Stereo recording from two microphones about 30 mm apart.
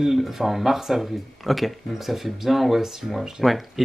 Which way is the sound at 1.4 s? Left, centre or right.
Centre.